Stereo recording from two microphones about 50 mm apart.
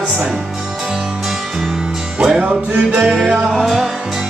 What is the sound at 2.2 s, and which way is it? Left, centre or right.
Music, centre.